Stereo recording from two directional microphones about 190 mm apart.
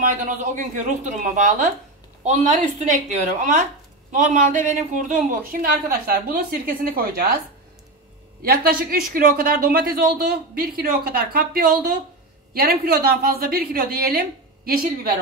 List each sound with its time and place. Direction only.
0.0 s a woman's voice: 40° right (ahead or behind)
8.4 s speech: 50° right (ahead or behind)